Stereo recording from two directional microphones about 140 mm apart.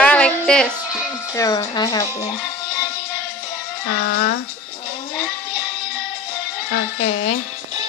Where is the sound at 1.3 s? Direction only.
25° left (ahead or behind).